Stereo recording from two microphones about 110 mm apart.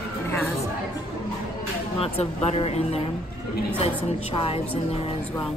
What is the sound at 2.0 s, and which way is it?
A woman's voice, 65° left (ahead or behind).